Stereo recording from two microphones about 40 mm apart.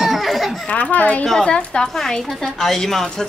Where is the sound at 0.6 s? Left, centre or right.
Left.